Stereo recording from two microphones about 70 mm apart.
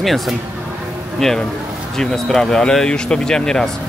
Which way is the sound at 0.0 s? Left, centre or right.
Centre.